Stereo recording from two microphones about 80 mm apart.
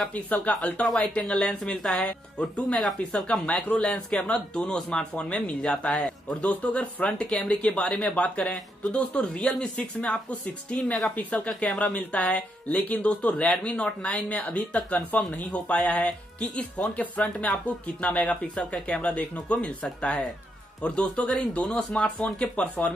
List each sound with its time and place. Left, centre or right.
0.5 s speech: centre